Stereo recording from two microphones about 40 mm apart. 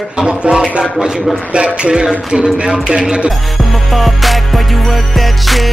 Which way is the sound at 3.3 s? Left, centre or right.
Centre.